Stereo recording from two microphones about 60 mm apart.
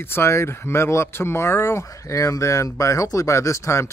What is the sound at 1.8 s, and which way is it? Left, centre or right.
A man's voice, left.